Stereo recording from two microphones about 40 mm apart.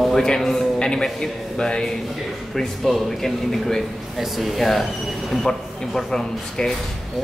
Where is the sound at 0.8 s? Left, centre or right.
Centre.